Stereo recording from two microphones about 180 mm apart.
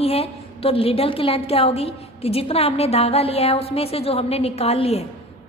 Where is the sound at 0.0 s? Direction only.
35° left (ahead or behind).